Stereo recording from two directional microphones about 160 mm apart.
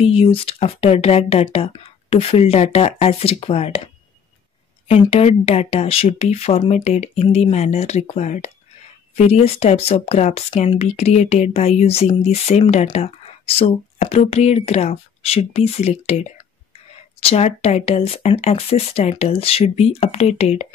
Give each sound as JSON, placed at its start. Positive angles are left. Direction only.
{"t": 0.0, "sound": "speech", "side_deg": 35}
{"t": 4.8, "sound": "speech", "side_deg": 40}